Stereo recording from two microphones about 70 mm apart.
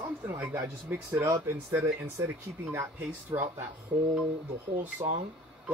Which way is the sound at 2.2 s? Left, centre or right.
Right.